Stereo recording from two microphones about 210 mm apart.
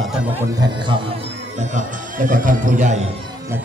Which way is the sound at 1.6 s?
40° right (ahead or behind).